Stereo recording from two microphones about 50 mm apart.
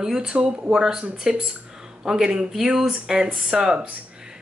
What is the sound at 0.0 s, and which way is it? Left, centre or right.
A woman's voice, centre.